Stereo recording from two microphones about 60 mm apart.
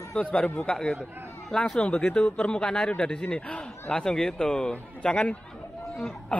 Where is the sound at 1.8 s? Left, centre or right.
Centre.